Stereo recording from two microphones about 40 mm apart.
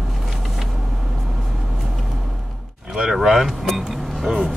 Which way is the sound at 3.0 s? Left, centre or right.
Centre.